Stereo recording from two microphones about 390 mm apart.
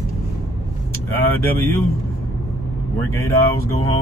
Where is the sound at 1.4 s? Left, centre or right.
Centre.